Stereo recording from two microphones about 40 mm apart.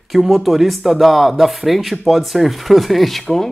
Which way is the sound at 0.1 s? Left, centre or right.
Centre.